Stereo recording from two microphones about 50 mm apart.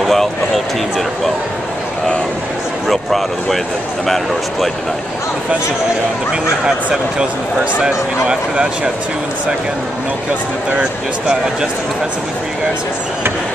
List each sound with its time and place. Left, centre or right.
0.0 s speech: centre
2.9 s speech: centre
6.6 s speech: centre
10.8 s speech: centre